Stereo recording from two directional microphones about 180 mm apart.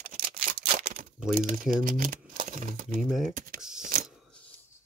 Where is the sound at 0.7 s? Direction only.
50° right (ahead or behind).